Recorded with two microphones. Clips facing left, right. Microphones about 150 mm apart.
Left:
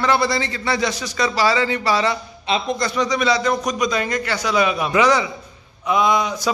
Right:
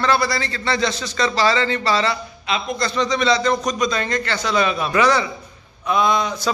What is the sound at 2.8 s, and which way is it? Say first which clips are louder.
A man's voice: even; 15° left (ahead or behind).